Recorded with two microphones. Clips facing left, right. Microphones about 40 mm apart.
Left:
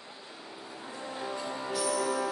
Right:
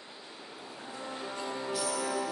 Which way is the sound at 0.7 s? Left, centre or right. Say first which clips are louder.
Left 1 dB; centre.